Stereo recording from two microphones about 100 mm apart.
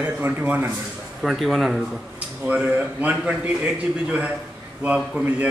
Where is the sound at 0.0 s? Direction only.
15° right (ahead or behind).